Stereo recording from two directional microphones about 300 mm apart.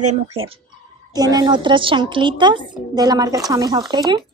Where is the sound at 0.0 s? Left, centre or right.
Centre.